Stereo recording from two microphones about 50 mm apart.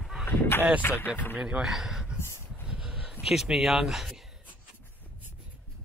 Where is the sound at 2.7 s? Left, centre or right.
Centre.